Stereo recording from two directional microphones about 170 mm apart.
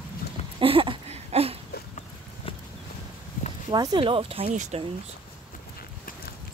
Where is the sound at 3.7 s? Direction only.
25° right (ahead or behind); by 4.8 s 40° right (ahead or behind).